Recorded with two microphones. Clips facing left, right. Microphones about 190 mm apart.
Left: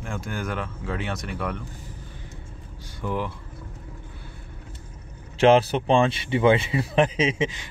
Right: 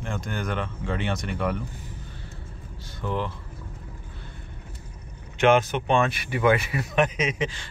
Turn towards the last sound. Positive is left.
turn(degrees=20)  # may be behind; listen again after turning